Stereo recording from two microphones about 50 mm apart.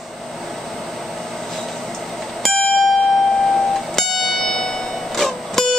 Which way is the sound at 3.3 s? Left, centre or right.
Centre.